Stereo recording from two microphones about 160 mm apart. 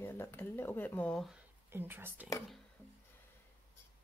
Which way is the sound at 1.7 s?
15° right (ahead or behind).